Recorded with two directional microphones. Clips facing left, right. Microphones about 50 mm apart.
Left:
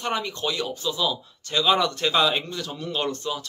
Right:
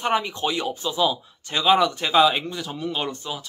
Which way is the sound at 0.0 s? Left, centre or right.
Centre.